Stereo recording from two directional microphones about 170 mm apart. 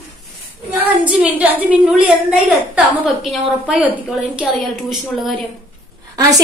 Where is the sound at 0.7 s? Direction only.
10° right (ahead or behind).